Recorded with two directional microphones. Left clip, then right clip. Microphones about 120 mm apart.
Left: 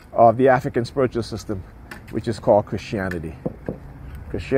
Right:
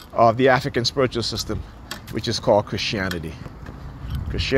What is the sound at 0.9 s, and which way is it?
Speech, 45° left (ahead or behind).